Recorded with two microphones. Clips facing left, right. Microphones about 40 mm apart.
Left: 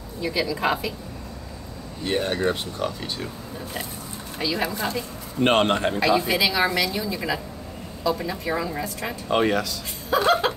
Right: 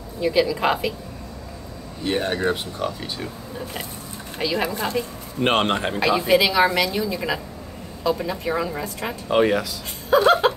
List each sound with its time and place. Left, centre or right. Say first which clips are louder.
0.2 s a woman's voice: right 4 dB; right
2.0 s speech: right 1 dB; centre
4.4 s a woman's voice: right 2 dB; right
5.4 s speech: left 1 dB; centre
6.3 s a woman's voice: right 4 dB; right
8.2 s a woman's voice: right 2 dB; centre
9.3 s speech: right 3 dB; centre
10.0 s speech: right 5 dB; right